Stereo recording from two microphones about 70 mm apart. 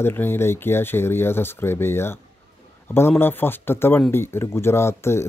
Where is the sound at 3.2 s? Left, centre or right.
Left.